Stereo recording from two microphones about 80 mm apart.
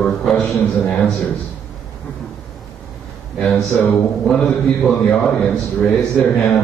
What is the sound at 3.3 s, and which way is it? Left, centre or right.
A man's voice, centre.